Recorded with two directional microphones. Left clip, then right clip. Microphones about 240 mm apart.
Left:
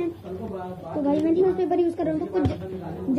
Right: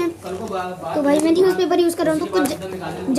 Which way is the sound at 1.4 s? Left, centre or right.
Centre.